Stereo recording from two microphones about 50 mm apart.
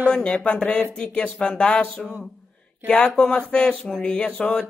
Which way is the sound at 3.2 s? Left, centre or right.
Left.